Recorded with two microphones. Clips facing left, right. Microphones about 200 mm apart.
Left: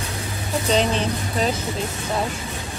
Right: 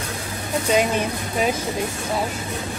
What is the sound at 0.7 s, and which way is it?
Speech, 10° right (ahead or behind).